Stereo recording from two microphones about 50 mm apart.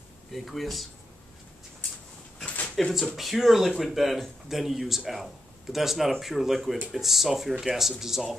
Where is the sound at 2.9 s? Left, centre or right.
Centre.